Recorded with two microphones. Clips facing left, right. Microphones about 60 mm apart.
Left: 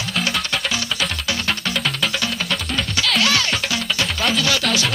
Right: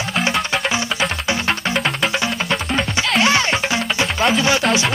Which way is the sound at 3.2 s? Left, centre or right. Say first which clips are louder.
Right 5 dB; right.